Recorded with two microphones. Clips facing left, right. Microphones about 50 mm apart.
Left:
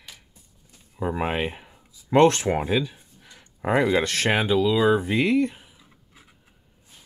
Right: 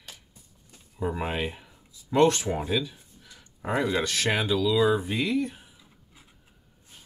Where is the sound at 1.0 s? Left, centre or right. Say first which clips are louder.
Left 4 dB; left.